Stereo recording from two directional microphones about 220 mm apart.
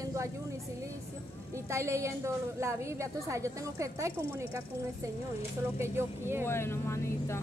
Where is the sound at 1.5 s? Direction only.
15° right (ahead or behind).